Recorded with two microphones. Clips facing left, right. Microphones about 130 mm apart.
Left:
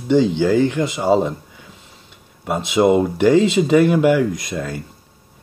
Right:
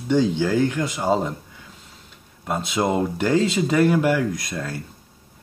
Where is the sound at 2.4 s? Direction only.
10° left (ahead or behind).